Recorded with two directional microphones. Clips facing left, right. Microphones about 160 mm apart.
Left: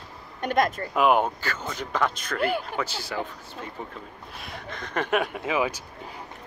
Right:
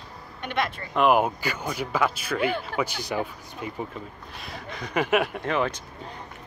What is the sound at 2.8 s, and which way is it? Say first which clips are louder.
Speech: right 3 dB; 15° right (ahead or behind).